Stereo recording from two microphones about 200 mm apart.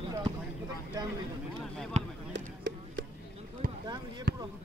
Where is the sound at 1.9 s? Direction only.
35° right (ahead or behind).